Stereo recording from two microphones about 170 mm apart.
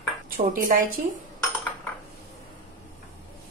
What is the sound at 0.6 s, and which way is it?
Speech, 55° right (ahead or behind).